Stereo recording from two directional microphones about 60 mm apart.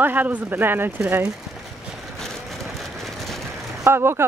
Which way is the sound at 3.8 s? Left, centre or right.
Right.